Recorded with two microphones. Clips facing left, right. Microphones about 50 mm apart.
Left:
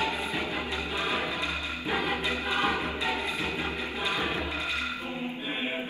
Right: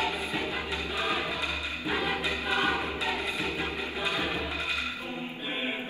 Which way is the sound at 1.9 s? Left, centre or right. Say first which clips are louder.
Left 1 dB; left.